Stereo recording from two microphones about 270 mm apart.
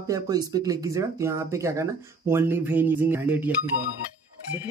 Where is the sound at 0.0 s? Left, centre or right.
Centre.